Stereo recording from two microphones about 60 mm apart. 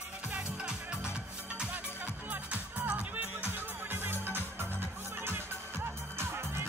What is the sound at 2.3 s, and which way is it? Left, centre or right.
Music, right.